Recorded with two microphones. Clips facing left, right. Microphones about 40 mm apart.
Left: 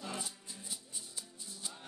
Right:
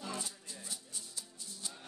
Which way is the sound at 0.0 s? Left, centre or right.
Centre.